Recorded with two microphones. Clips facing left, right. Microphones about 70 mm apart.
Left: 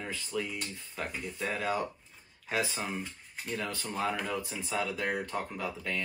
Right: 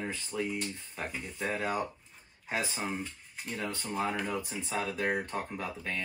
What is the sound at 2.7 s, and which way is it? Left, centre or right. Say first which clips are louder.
Speech: right 1 dB; centre.